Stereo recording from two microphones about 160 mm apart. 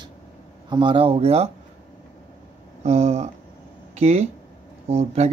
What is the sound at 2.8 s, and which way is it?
Speech, 40° right (ahead or behind).